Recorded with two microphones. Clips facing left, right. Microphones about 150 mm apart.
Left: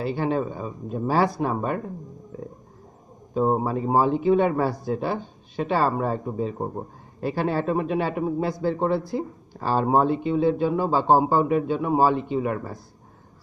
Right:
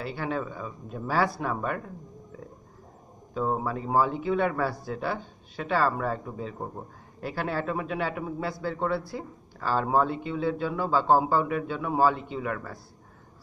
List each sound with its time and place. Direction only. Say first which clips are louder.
0.0 s speech: left 7 dB; 20° left (ahead or behind)
3.4 s speech: left 5 dB; 30° left (ahead or behind)
3.7 s speech: left 4 dB; 20° left (ahead or behind)
8.5 s speech: left 2 dB; 20° left (ahead or behind)